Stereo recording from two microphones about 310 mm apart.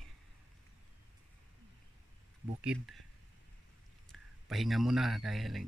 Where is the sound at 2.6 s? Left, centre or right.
Centre.